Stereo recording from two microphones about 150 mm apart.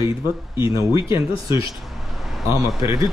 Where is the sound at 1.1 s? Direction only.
30° left (ahead or behind).